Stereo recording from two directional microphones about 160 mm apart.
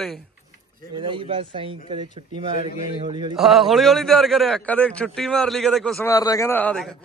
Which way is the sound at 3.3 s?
Centre (ahead or behind).